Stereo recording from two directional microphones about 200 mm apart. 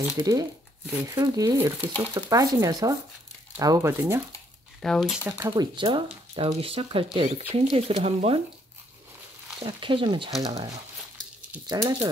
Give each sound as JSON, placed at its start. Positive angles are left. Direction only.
{"t": 0.0, "sound": "speech", "side_deg": -15}
{"t": 4.8, "sound": "speech", "side_deg": 0}
{"t": 5.2, "sound": "speech", "side_deg": -20}
{"t": 9.6, "sound": "speech", "side_deg": -25}